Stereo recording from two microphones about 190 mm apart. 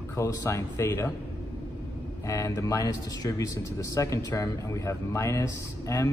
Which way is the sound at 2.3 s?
15° left (ahead or behind).